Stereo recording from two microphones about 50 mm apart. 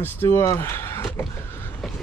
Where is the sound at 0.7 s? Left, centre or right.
Left.